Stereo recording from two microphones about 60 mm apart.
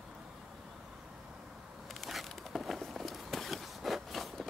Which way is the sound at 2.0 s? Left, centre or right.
Centre.